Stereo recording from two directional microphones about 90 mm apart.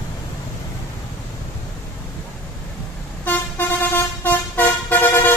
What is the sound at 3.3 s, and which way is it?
Vehicle, 15° left (ahead or behind).